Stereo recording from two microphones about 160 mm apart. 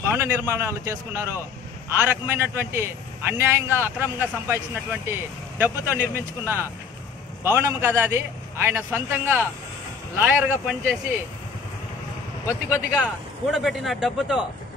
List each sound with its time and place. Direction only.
0.1 s a man's voice: 15° right (ahead or behind)
12.4 s speech: 20° left (ahead or behind)
12.9 s a man's voice: 5° right (ahead or behind)